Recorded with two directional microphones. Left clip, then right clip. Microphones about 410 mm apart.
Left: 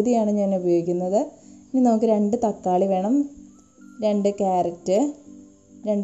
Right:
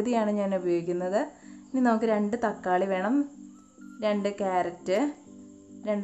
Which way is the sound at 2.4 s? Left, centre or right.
Centre.